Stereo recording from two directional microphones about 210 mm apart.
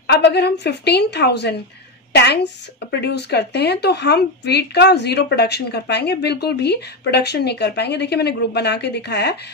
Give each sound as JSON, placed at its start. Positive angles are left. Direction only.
{"t": 0.0, "sound": "speech", "side_deg": 50}